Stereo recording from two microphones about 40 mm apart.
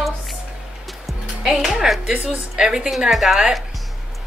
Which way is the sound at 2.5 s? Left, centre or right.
Centre.